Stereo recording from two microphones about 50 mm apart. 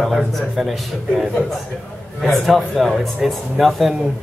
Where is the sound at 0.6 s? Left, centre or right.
Centre.